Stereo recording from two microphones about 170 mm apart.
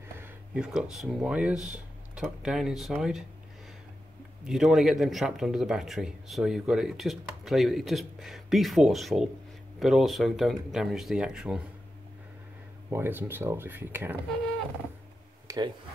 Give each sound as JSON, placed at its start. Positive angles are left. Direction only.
{"t": 0.2, "sound": "a man's voice", "side_deg": -5}
{"t": 4.5, "sound": "a man's voice", "side_deg": -5}
{"t": 12.9, "sound": "speech", "side_deg": -10}
{"t": 15.4, "sound": "a sound", "side_deg": -25}